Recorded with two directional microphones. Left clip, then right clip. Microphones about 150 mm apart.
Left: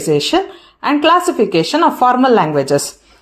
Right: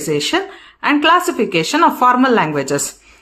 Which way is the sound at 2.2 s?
25° right (ahead or behind).